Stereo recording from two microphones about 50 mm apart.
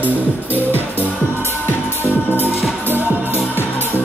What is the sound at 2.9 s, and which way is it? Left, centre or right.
Music, right.